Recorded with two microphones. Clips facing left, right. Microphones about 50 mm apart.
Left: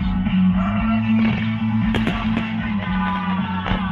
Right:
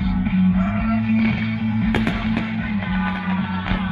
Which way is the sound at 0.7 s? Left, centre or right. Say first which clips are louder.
Left 1 dB; left.